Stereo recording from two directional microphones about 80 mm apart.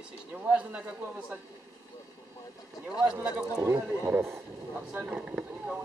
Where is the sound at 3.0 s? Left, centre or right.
Centre.